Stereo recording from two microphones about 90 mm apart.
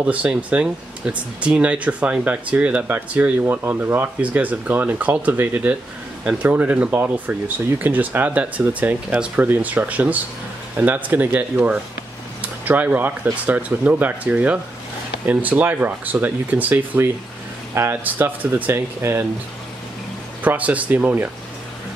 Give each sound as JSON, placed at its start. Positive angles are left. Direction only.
{"t": 0.0, "sound": "speech", "side_deg": -15}
{"t": 20.4, "sound": "speech", "side_deg": -15}